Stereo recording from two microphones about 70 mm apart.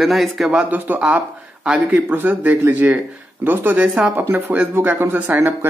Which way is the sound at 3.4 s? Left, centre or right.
Right.